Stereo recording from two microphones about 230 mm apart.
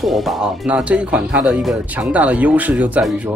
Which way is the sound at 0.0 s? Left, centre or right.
Centre.